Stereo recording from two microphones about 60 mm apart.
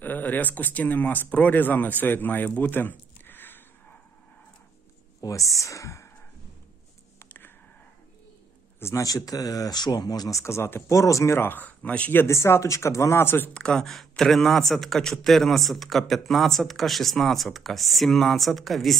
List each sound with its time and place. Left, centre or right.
0.0 s speech: left
5.2 s speech: left
8.7 s a sound: left
9.0 s speech: left
10.4 s speech: left
11.4 s speech: left
12.3 s speech: left
13.2 s speech: left
13.5 s speech: centre
13.8 s a man's voice: centre